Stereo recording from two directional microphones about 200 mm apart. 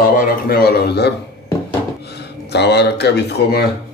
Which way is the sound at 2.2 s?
55° left (ahead or behind).